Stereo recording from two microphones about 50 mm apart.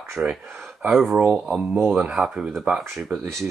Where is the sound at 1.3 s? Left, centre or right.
Centre.